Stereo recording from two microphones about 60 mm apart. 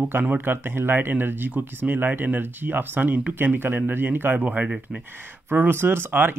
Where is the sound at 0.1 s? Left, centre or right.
Right.